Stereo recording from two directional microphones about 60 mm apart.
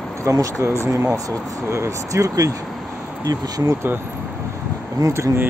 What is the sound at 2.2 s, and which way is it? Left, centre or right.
Speech, right.